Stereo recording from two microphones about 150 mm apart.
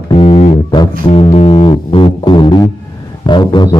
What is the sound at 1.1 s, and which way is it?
Music, 40° left (ahead or behind).